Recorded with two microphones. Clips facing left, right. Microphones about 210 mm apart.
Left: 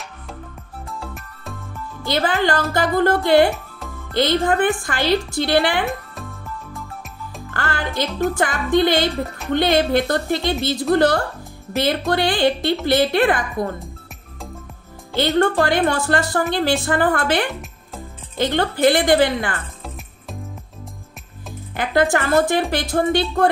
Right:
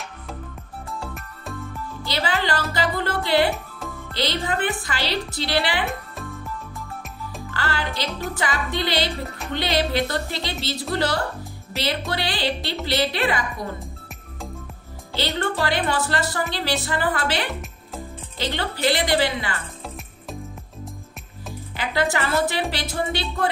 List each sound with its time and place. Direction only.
1.0 s music: centre (ahead or behind)
2.0 s a woman's voice: 50° left (ahead or behind)
7.5 s music: 50° left (ahead or behind)
8.4 s a woman's voice: 50° left (ahead or behind)
15.1 s a woman's voice: 50° left (ahead or behind)
17.5 s music: centre (ahead or behind)
18.4 s a woman's voice: 50° left (ahead or behind)
21.7 s a woman's voice: 50° left (ahead or behind)